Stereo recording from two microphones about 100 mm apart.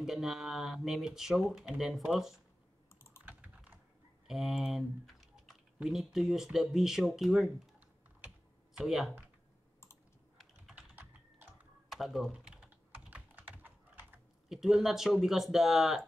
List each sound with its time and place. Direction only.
0.0 s speech: 5° right (ahead or behind)
3.3 s computer keyboard: 15° right (ahead or behind)
4.3 s typing: centre (ahead or behind)
5.8 s speech: 5° right (ahead or behind)
8.7 s speech: 5° right (ahead or behind)
10.7 s typing: 15° right (ahead or behind)
11.9 s speech: centre (ahead or behind)
12.3 s typing: 10° right (ahead or behind)
14.5 s speech: 5° right (ahead or behind)